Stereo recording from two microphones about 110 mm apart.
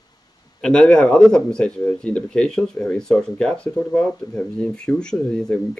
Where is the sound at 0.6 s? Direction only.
5° left (ahead or behind).